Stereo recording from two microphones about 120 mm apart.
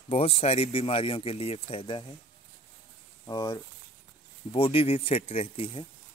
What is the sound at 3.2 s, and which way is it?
Speech, 35° left (ahead or behind).